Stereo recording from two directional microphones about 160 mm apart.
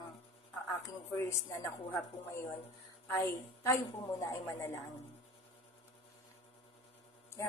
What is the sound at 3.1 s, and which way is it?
Speech, 20° left (ahead or behind).